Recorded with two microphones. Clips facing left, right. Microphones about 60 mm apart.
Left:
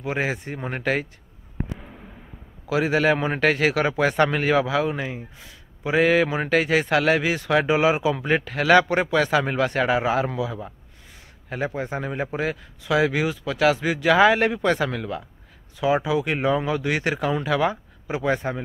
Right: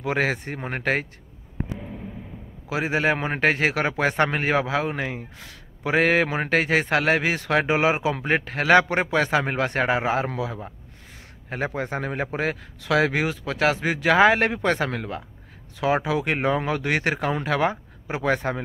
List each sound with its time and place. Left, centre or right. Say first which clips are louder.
0.0 s speech: right 2 dB; right
0.6 s a man's voice: left 2 dB; right
2.7 s a man's voice: left 3 dB; right
5.0 s speech: right 1 dB; right
5.9 s a man's voice: left 1 dB; right
11.7 s a man's voice: even; right
15.8 s a man's voice: left 1 dB; right
18.2 s speech: right 1 dB; right